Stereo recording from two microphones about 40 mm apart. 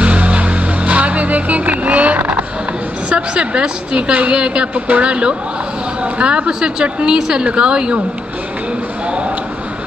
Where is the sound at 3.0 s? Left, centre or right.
Right.